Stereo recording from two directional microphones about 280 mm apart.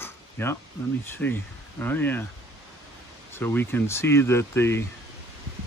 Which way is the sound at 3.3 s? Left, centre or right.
Centre.